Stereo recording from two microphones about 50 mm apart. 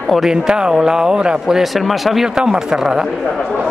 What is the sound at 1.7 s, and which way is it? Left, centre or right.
Speech, centre.